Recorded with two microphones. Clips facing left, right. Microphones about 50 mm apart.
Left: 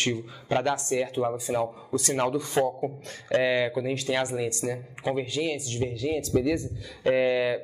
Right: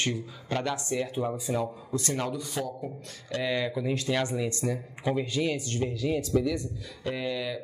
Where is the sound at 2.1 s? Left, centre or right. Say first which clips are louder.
Left 7 dB; left; by 4.5 s centre.